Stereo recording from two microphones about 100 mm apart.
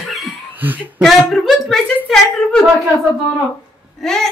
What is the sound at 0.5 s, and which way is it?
Speech, 20° right (ahead or behind).